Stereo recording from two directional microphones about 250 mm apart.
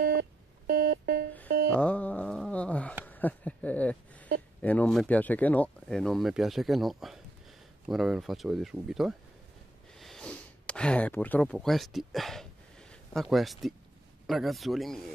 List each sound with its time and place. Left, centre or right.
0.0 s music: right
1.7 s a sound: centre
4.6 s speech: centre